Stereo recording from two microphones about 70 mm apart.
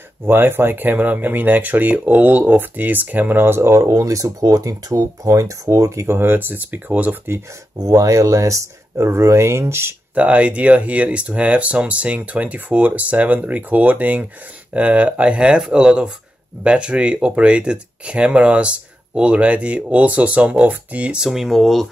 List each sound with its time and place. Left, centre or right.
0.2 s speech: right
6.1 s speech: right
7.8 s speech: right
10.1 s speech: right; by 21.8 s centre